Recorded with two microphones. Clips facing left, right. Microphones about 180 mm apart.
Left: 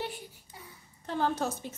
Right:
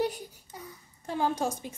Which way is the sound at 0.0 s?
40° right (ahead or behind).